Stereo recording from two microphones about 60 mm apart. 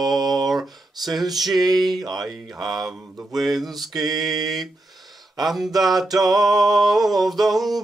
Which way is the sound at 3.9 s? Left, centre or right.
Right.